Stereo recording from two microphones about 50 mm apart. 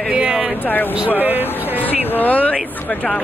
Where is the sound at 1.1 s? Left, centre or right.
Right.